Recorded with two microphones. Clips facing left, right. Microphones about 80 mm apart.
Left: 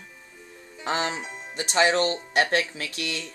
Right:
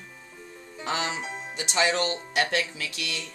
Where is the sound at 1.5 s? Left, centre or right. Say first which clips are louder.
Left 4 dB; left.